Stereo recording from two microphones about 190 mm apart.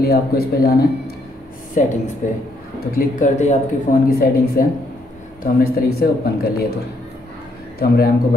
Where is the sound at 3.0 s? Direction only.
45° left (ahead or behind).